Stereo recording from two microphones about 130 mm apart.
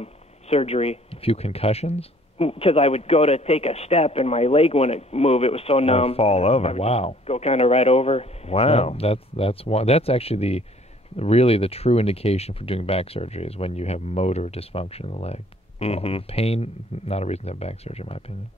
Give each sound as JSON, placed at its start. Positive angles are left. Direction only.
{"t": 0.0, "sound": "speech", "side_deg": 50}